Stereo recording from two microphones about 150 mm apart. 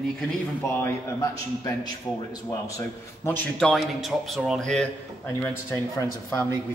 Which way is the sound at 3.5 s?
Centre (ahead or behind).